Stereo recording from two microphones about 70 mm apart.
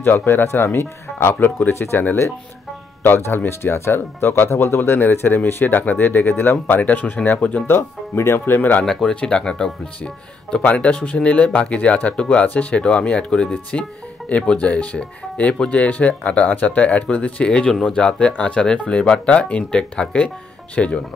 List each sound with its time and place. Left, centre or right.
0.0 s speech: left
7.6 s speech: left
8.8 s speech: centre